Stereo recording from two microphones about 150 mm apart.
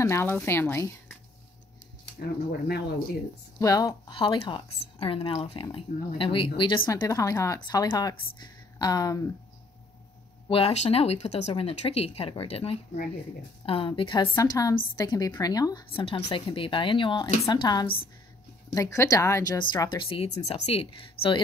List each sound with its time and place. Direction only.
0.0 s speech: 15° left (ahead or behind)
3.5 s speech: 20° left (ahead or behind)
4.1 s a woman's voice: 35° left (ahead or behind)
6.9 s speech: 20° left (ahead or behind)
10.5 s a woman's voice: 45° left (ahead or behind)
14.2 s speech: 20° left (ahead or behind)
15.9 s a woman's voice: 40° left (ahead or behind)